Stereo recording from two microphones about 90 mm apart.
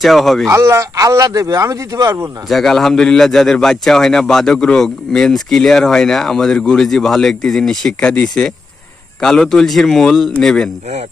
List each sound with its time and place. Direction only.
0.0 s a man's voice: centre (ahead or behind)
0.5 s speech: 35° right (ahead or behind)
2.4 s a man's voice: centre (ahead or behind)